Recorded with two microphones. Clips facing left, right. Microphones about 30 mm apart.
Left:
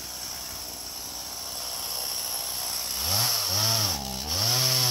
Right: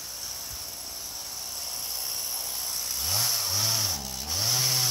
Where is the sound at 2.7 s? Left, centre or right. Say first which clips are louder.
Left 2 dB; left.